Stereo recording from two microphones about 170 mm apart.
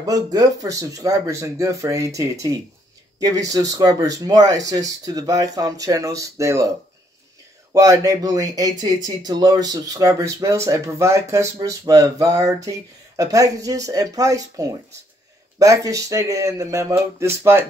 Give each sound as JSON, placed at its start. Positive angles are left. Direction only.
{"t": 0.0, "sound": "speech", "side_deg": -20}
{"t": 7.7, "sound": "speech", "side_deg": -20}